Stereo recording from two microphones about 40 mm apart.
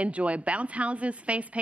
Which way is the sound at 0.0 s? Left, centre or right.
Right.